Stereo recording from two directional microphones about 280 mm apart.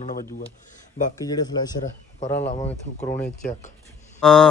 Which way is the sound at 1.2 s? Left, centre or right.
Centre.